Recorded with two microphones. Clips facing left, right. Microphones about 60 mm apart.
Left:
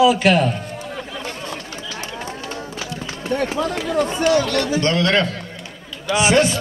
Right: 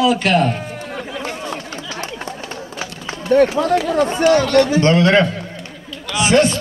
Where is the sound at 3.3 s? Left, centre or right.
Right.